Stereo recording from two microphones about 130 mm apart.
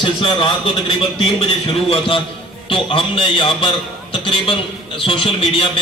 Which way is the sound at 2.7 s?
40° left (ahead or behind).